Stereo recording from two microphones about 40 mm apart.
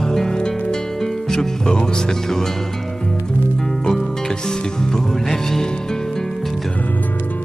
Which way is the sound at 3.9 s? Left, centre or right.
Centre.